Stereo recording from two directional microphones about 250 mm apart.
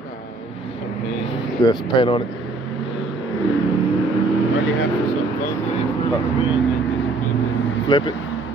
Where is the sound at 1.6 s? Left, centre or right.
Centre.